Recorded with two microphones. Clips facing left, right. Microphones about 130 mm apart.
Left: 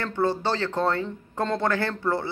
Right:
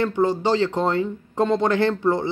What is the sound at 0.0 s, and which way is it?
Speech, 15° right (ahead or behind).